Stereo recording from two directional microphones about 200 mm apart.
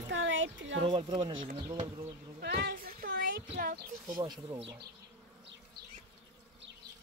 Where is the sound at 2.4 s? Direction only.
55° right (ahead or behind).